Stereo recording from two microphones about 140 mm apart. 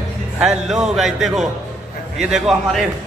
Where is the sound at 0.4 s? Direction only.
5° right (ahead or behind).